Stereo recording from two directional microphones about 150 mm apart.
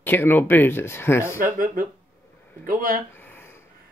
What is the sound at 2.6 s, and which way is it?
Speech, 65° right (ahead or behind).